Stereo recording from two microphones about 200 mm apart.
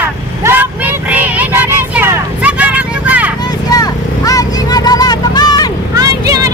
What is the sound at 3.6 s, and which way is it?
Vehicle, 20° left (ahead or behind).